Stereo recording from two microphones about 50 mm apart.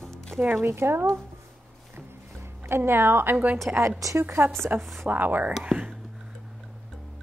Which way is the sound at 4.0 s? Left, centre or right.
Right.